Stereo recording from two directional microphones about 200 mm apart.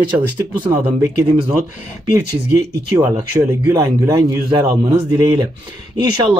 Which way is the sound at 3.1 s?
20° right (ahead or behind).